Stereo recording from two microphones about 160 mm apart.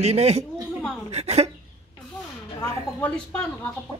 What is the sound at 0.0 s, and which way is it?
A woman's voice, 40° right (ahead or behind).